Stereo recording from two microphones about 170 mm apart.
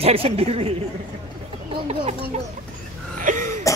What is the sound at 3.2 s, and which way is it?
Wheeze, 45° right (ahead or behind).